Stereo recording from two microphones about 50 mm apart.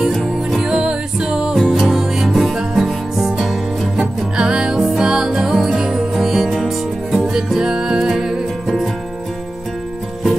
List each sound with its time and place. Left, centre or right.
0.1 s music: centre
0.6 s music: centre
4.4 s music: centre